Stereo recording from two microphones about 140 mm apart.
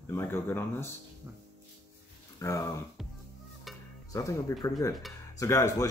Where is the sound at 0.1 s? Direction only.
15° left (ahead or behind).